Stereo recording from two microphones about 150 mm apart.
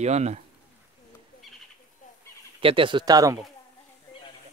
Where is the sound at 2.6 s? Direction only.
35° right (ahead or behind).